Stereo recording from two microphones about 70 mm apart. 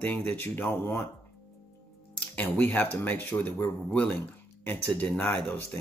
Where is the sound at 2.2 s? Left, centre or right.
Left.